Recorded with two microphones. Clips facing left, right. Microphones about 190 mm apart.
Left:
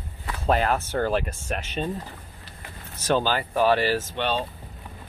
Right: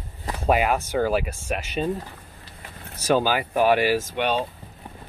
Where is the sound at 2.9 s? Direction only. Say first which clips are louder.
Right 2 dB; 10° right (ahead or behind).